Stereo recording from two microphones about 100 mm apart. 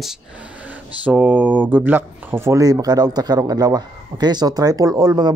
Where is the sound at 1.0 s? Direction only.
15° right (ahead or behind).